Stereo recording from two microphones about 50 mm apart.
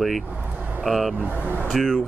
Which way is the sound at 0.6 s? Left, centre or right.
Right.